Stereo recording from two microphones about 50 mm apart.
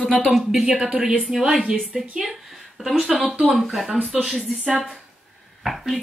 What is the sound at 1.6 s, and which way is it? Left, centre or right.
Speech, centre.